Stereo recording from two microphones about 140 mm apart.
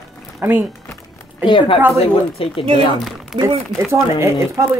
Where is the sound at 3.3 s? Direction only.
35° right (ahead or behind).